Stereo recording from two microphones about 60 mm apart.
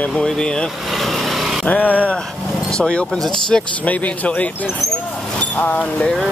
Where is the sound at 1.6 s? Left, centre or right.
Left; by 3.7 s centre.